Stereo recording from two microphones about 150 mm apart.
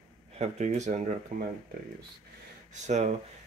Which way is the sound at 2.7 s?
50° right (ahead or behind).